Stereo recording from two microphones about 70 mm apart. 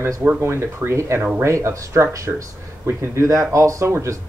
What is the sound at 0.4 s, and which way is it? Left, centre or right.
Speech, right.